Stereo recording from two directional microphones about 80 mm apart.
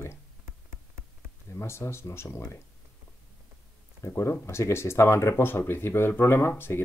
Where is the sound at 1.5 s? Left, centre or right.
Left.